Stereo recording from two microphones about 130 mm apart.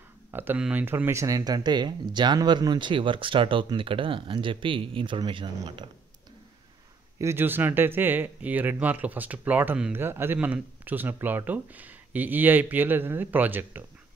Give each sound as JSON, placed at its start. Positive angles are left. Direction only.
{"t": 0.3, "sound": "speech", "side_deg": -15}
{"t": 7.2, "sound": "speech", "side_deg": -20}